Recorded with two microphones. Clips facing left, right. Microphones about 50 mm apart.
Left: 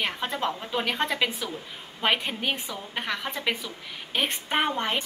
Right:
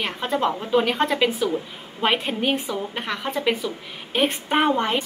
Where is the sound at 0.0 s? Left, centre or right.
Centre.